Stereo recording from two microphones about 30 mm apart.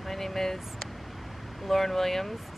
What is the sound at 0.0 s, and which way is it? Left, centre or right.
Speech, centre.